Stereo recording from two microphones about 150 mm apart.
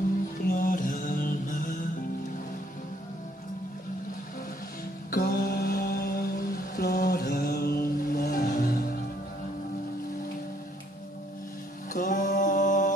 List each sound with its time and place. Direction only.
0.5 s mantra: 65° left (ahead or behind)
5.1 s mantra: 90° left
11.9 s mantra: 60° left (ahead or behind)